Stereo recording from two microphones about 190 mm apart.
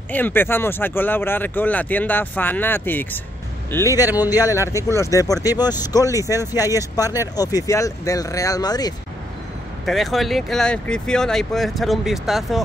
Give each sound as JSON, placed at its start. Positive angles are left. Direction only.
{"t": 0.1, "sound": "speech", "side_deg": 10}
{"t": 4.1, "sound": "speech", "side_deg": -10}
{"t": 4.5, "sound": "speech", "side_deg": 15}
{"t": 9.8, "sound": "speech", "side_deg": 0}